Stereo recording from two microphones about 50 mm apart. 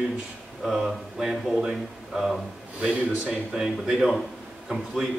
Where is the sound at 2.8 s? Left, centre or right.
Centre.